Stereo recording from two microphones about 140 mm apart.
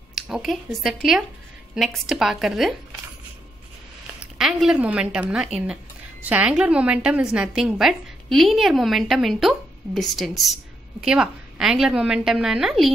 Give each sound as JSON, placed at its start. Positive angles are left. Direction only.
{"t": 0.1, "sound": "a woman's voice", "side_deg": 0}
{"t": 4.2, "sound": "a woman's voice", "side_deg": -5}